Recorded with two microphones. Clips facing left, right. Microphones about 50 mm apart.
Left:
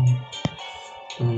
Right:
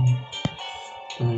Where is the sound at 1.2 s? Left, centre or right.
Centre.